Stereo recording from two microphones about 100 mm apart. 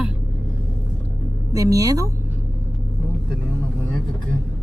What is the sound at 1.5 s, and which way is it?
Speech, 35° right (ahead or behind).